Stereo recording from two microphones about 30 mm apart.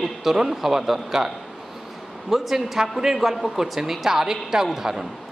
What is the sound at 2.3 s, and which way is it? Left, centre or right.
A man's voice, centre.